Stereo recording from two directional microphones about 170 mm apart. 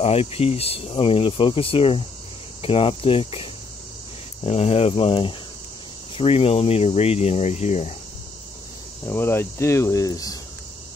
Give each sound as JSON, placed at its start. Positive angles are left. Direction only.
{"t": 0.0, "sound": "speech", "side_deg": 35}
{"t": 4.5, "sound": "speech", "side_deg": 35}
{"t": 9.0, "sound": "speech", "side_deg": 15}